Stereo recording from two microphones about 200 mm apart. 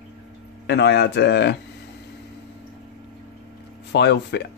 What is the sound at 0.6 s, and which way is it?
Speech, 60° left (ahead or behind).